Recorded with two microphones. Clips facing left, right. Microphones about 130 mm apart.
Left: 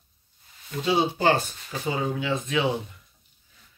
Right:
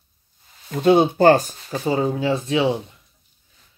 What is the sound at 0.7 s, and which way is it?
Speech, 55° right (ahead or behind).